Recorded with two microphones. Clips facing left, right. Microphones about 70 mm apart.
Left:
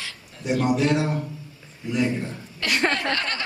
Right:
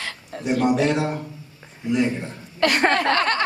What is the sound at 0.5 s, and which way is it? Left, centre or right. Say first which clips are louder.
Speech: right 2 dB; right.